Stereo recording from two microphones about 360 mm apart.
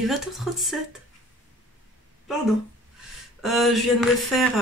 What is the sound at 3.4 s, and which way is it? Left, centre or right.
Speech, centre.